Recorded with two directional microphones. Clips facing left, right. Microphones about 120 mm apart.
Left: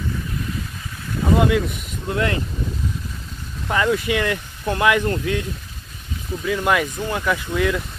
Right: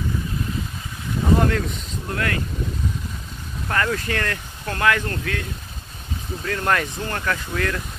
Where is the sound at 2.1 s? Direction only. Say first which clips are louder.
Left 4 dB; 20° left (ahead or behind).